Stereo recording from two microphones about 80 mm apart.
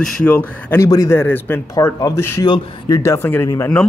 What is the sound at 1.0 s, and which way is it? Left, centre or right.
Speech, left.